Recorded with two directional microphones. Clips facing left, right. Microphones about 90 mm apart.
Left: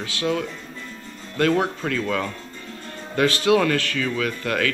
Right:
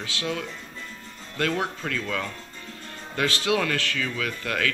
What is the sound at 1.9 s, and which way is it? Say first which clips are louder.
Speech: left 6 dB; 30° left (ahead or behind).